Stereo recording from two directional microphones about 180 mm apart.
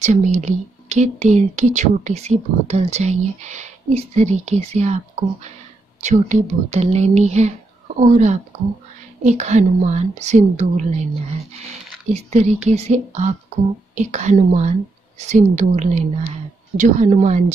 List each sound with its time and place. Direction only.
0.0 s speech: 40° right (ahead or behind)
12.1 s speech: 35° right (ahead or behind)